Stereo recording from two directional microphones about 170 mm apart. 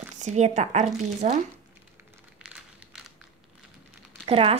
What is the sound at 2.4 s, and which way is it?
Crumpling, 5° right (ahead or behind).